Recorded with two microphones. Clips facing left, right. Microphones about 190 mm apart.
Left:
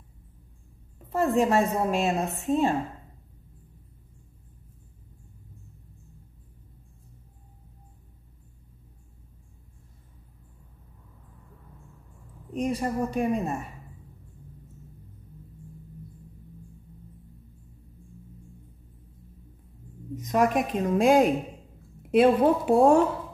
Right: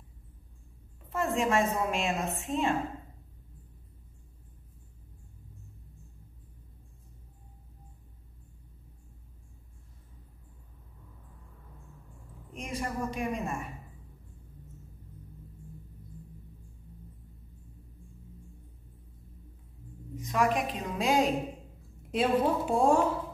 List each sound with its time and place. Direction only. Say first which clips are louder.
1.1 s a woman's voice: left 5 dB; 35° left (ahead or behind)
12.5 s a woman's voice: left 8 dB; 35° left (ahead or behind)
20.2 s a woman's voice: left 5 dB; 45° left (ahead or behind); by 22.9 s 65° left (ahead or behind)